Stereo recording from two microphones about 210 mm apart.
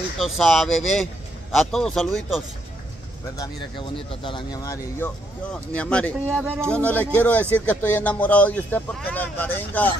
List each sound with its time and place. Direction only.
0.2 s speech: centre (ahead or behind)
3.3 s speech: 25° left (ahead or behind)
5.0 s speech: 5° left (ahead or behind)